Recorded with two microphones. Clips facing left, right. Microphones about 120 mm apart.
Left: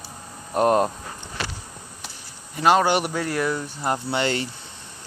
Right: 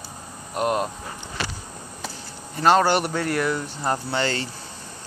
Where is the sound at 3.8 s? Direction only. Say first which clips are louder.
Left 1 dB; 20° left (ahead or behind).